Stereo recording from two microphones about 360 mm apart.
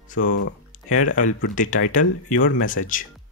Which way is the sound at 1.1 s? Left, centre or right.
Left.